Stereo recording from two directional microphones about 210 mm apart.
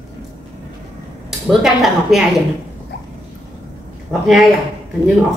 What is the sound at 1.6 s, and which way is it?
Speech, centre (ahead or behind).